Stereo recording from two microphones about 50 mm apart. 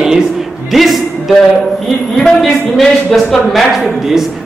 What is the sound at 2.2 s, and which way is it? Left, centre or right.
A man's voice, centre.